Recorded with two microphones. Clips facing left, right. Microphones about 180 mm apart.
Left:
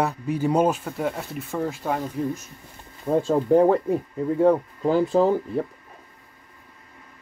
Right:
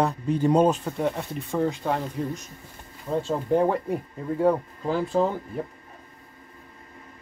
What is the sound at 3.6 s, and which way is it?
Speech, 20° left (ahead or behind).